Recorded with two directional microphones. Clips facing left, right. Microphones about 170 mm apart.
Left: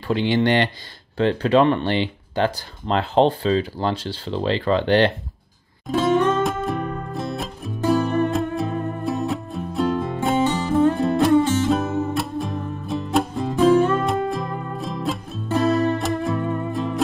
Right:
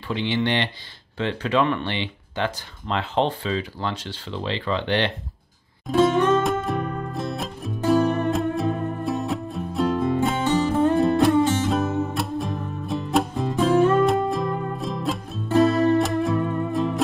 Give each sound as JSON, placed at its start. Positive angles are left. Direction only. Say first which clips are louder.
{"t": 0.1, "sound": "speech", "louder": "left 5 dB", "side_deg": 40}
{"t": 5.9, "sound": "music", "louder": "even", "side_deg": 0}